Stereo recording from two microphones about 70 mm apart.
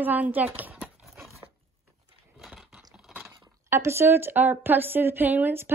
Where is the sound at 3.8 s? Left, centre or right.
Right.